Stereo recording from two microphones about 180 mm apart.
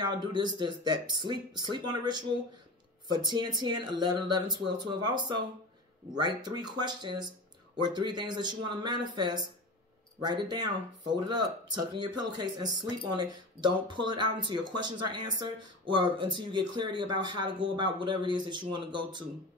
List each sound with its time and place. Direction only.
0.0 s speech: 25° right (ahead or behind)